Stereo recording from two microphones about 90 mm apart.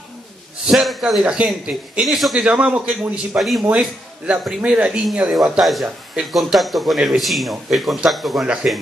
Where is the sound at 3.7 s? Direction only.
10° right (ahead or behind).